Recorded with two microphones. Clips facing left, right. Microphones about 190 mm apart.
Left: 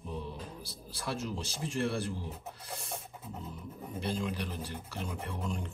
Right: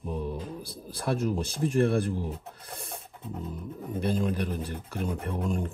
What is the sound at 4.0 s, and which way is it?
Speech, 50° right (ahead or behind).